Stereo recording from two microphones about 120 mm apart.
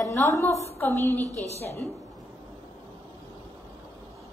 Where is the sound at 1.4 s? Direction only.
60° left (ahead or behind).